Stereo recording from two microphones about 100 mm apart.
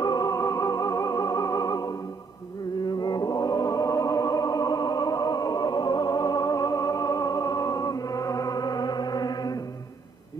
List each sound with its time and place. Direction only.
0.0 s music: 40° left (ahead or behind)